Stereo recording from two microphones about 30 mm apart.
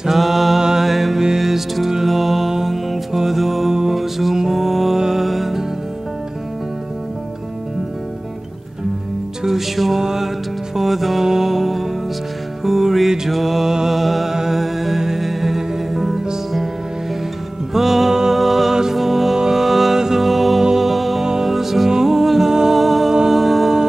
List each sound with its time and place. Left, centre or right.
0.1 s mantra: centre
0.6 s music: centre
0.8 s music: centre
4.9 s music: centre
5.2 s music: centre
9.9 s music: centre
13.7 s music: centre
13.9 s music: centre
14.3 s music: centre
17.7 s music: centre
18.7 s music: centre
21.2 s music: centre
22.5 s music: right
22.8 s humming: centre